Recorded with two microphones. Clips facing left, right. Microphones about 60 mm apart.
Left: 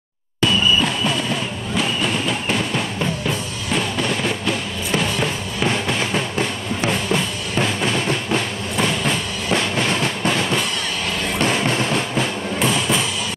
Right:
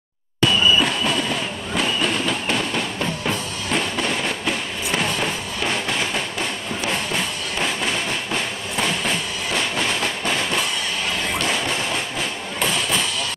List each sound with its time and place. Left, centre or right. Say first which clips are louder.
0.7 s a sound: even; centre
3.3 s music: left 1 dB; centre
11.3 s train: left 7 dB; left